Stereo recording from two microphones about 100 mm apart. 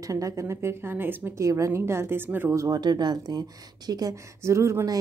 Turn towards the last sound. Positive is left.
turn(degrees=-30)  # may be behind; listen again after turning